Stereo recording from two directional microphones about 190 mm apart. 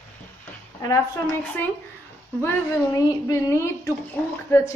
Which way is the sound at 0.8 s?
15° left (ahead or behind).